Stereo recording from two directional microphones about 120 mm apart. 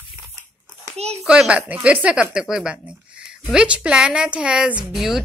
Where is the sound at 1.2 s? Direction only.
5° right (ahead or behind).